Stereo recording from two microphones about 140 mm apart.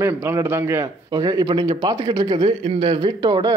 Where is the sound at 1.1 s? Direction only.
30° right (ahead or behind).